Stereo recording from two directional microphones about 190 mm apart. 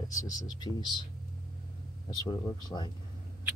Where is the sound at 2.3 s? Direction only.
25° left (ahead or behind).